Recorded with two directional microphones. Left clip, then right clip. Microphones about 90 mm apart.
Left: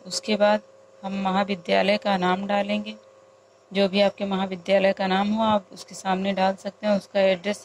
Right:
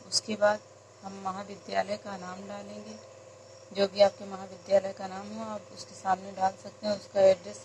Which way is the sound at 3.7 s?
40° left (ahead or behind).